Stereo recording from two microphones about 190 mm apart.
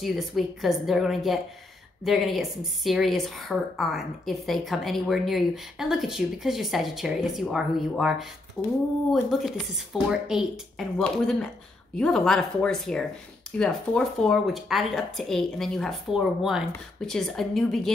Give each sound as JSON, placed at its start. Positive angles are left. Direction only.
{"t": 0.0, "sound": "a woman's voice", "side_deg": 0}